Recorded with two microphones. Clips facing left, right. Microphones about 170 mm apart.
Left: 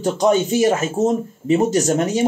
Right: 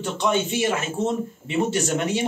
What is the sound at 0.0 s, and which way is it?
Speech, 40° left (ahead or behind).